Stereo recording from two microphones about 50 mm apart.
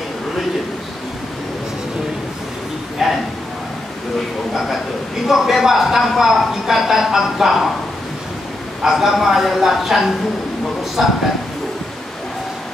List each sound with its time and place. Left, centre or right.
3.0 s a sound: centre
5.3 s a man's voice: centre
8.8 s a man's voice: centre